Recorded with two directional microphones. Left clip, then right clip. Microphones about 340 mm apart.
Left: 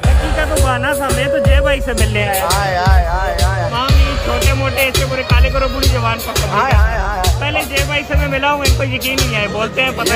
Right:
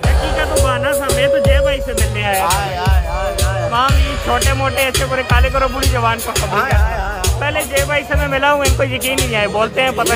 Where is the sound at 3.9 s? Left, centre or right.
Right.